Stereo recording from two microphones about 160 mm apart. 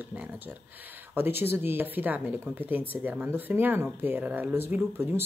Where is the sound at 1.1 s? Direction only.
15° right (ahead or behind).